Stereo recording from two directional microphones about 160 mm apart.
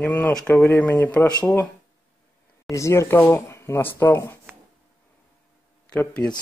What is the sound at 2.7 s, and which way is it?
Speech, 20° left (ahead or behind).